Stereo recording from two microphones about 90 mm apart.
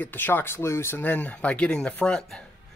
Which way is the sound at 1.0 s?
20° left (ahead or behind).